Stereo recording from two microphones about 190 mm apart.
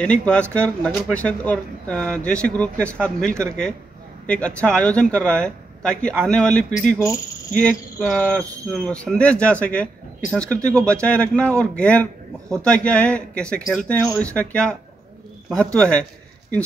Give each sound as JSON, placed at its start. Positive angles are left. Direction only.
{"t": 0.0, "sound": "speech", "side_deg": 5}
{"t": 7.6, "sound": "speech", "side_deg": 5}